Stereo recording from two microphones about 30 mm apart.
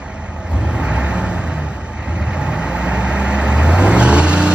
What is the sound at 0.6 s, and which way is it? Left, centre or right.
Vehicle, right.